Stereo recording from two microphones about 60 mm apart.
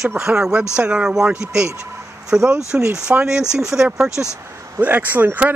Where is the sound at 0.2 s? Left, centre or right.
Centre.